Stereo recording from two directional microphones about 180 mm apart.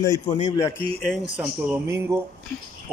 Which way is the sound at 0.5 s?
15° left (ahead or behind).